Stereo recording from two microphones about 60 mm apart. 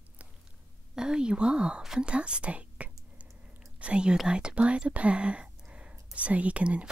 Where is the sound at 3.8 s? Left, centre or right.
Centre.